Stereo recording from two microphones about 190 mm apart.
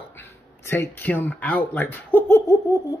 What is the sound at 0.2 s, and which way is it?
Speech, 10° left (ahead or behind).